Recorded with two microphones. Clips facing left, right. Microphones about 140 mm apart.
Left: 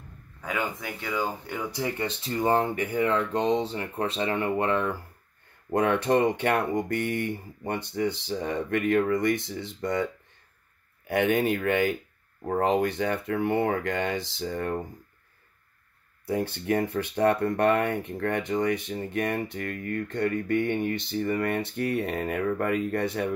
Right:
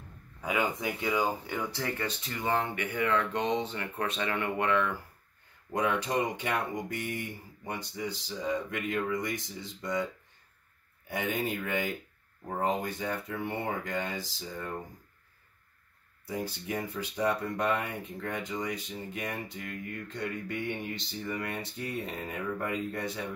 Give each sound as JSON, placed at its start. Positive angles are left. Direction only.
{"t": 0.4, "sound": "speech", "side_deg": -15}
{"t": 1.2, "sound": "speech", "side_deg": -5}
{"t": 1.6, "sound": "speech", "side_deg": 15}
{"t": 5.7, "sound": "speech", "side_deg": 60}
{"t": 11.1, "sound": "speech", "side_deg": 70}
{"t": 16.3, "sound": "speech", "side_deg": 60}